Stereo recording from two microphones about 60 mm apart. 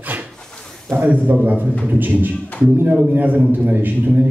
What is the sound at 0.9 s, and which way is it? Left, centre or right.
A man's voice, right.